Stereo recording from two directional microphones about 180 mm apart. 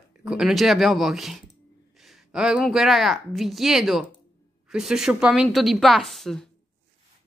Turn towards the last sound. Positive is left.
turn(degrees=5)  # may be behind; listen again after turning